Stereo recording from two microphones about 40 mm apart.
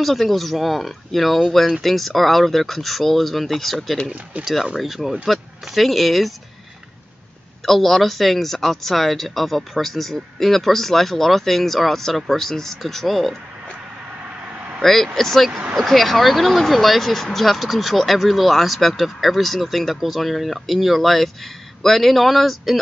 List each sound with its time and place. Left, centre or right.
0.0 s speech: centre
4.1 s speech: right
4.7 s speech: centre
7.6 s speech: centre
14.8 s speech: centre